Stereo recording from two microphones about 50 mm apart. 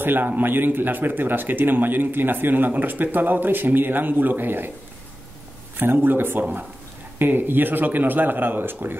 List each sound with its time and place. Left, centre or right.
0.0 s a man's voice: right
5.8 s a man's voice: right